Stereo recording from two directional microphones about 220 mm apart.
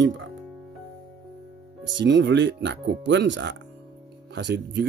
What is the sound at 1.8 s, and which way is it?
Speech, 55° right (ahead or behind).